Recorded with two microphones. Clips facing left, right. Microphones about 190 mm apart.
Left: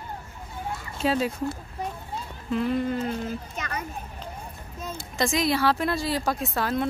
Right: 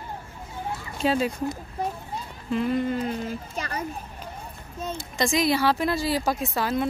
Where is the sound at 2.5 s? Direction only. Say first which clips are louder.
Right 1 dB; 5° right (ahead or behind).